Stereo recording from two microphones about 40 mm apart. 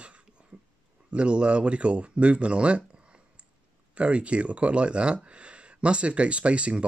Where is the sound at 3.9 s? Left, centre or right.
Right.